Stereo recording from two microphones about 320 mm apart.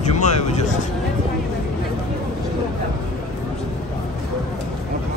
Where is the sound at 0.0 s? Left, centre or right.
Left.